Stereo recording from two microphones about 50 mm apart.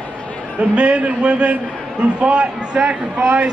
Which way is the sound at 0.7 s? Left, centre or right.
Right.